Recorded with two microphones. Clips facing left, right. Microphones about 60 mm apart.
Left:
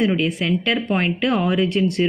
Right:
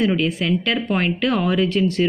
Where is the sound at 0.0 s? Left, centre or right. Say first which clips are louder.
Even; left.